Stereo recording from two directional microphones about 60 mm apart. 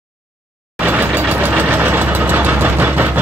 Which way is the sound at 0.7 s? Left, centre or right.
Right.